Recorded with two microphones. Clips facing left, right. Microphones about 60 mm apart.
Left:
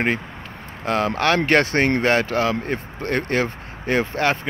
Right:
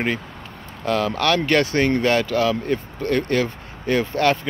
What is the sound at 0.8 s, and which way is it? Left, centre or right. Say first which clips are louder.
Speech: even; left.